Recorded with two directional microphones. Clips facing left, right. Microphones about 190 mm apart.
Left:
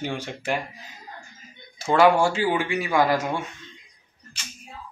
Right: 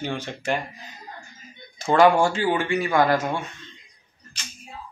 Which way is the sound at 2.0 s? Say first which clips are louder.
Right 1 dB; 5° left (ahead or behind).